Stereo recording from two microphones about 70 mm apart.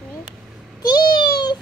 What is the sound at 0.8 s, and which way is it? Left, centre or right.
Cat, left.